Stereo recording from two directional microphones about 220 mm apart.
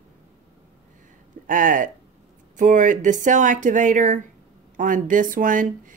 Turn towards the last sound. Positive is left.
turn(degrees=-35)  # may be behind; listen again after turning